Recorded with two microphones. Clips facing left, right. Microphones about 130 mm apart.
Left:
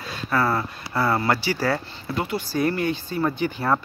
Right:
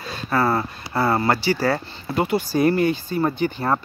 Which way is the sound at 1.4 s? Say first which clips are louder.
Right 4 dB; 10° left (ahead or behind).